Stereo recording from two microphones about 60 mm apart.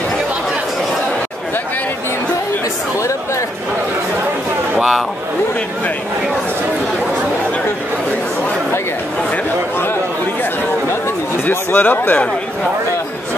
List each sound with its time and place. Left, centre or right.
3.0 s a sound: left
4.7 s speech: centre
11.4 s speech: left